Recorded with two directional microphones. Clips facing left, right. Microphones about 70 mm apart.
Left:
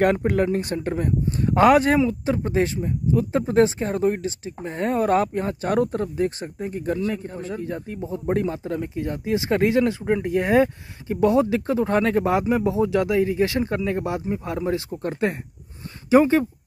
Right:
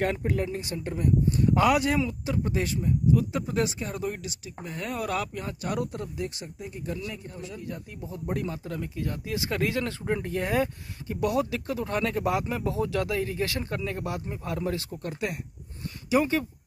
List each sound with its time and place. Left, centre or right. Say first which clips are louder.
0.0 s speech: left 8 dB; left
0.8 s speech: left 2 dB; left
15.0 s speech: left 8 dB; left